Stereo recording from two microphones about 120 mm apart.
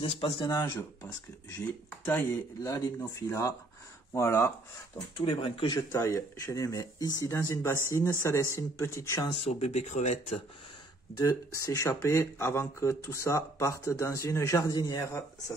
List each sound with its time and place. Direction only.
0.0 s speech: 45° left (ahead or behind); by 1.1 s 30° left (ahead or behind)
2.0 s speech: 15° left (ahead or behind)
2.6 s speech: 30° left (ahead or behind)
5.1 s speech: 45° left (ahead or behind)
5.8 s speech: 30° left (ahead or behind)
9.5 s speech: 65° left (ahead or behind)
11.1 s speech: 25° left (ahead or behind)